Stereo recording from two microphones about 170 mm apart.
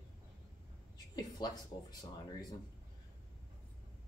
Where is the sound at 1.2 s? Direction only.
25° left (ahead or behind).